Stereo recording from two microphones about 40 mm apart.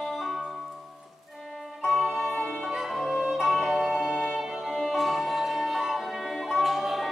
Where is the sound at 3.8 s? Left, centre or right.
Centre.